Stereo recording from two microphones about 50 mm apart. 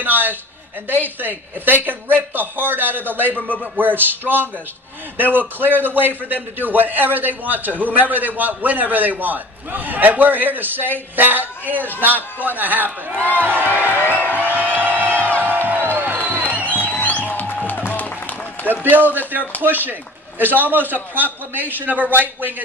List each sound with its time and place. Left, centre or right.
0.0 s a man's voice: right
5.3 s a man's voice: right
14.2 s music: left
14.5 s music: right
16.6 s music: left
18.7 s a man's voice: right